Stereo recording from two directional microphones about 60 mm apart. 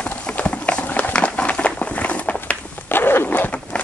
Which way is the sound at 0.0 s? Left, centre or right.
Left.